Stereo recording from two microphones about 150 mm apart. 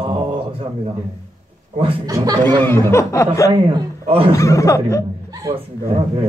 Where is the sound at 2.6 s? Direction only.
15° left (ahead or behind).